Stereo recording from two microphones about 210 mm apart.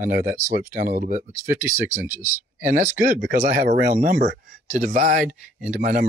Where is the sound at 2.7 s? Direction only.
40° right (ahead or behind).